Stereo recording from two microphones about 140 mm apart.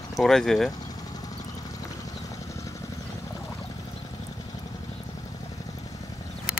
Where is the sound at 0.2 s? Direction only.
5° left (ahead or behind).